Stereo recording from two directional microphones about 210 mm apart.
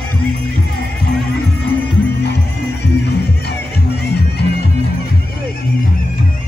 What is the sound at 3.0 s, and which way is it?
Music, 50° left (ahead or behind).